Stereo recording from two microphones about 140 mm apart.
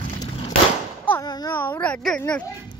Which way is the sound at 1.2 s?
30° left (ahead or behind).